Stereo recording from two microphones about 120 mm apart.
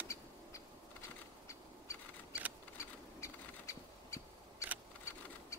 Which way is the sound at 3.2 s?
25° left (ahead or behind).